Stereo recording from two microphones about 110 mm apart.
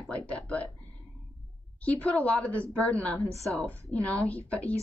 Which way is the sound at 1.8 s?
10° left (ahead or behind).